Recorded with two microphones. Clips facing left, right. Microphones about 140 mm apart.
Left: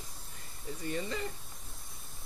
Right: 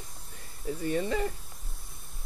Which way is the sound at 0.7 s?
55° right (ahead or behind).